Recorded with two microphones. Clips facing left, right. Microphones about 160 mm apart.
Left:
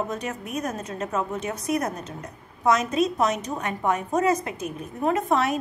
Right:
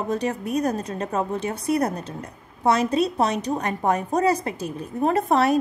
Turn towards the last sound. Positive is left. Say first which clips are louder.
# right 4 dB
turn(degrees=-35)  # may be behind; listen again after turning